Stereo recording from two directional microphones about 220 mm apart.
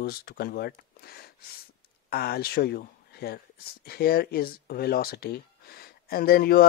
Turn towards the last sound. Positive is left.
turn(degrees=45)  # may be behind; listen again after turning